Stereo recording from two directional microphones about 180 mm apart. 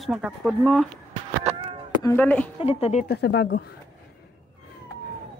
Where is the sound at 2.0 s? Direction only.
10° left (ahead or behind).